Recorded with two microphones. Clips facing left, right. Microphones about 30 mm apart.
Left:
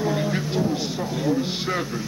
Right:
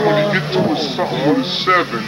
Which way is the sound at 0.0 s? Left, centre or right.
Right.